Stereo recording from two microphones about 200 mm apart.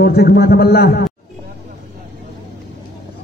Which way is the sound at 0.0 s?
50° left (ahead or behind).